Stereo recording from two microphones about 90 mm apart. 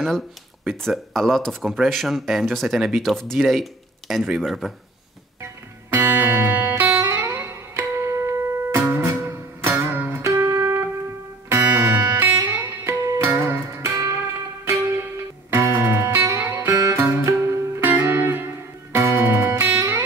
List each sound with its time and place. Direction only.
0.7 s speech: 5° left (ahead or behind)
5.9 s music: 25° right (ahead or behind)
11.7 s music: 20° right (ahead or behind)